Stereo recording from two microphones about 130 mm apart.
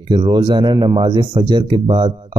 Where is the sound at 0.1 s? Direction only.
30° right (ahead or behind).